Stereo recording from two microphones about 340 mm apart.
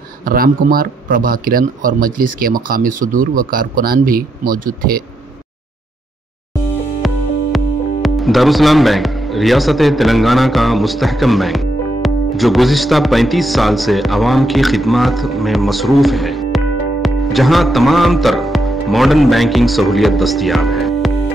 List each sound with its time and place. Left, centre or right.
0.2 s speech: right
7.5 s speech: centre